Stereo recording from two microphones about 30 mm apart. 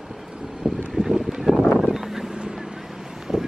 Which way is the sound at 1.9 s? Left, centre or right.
Centre.